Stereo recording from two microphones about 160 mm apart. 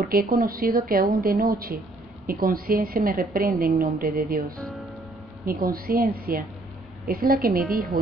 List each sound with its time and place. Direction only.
0.1 s a woman's voice: 65° right (ahead or behind)